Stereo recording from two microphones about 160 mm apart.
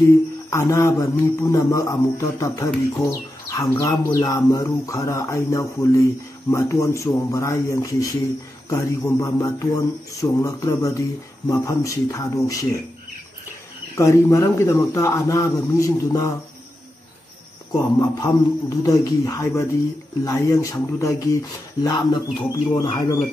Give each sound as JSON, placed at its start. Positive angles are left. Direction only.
{"t": 0.5, "sound": "a man's voice", "side_deg": 15}
{"t": 13.9, "sound": "a man's voice", "side_deg": 20}
{"t": 17.7, "sound": "a man's voice", "side_deg": 20}